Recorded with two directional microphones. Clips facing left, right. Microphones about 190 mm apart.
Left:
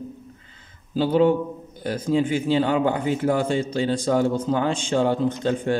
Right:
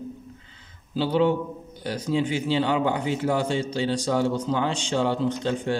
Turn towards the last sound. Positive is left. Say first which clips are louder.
# left 3 dB
turn(degrees=50)  # may be behind; listen again after turning